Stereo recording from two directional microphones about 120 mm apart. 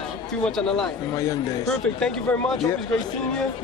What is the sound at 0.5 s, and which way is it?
Speech, 5° left (ahead or behind).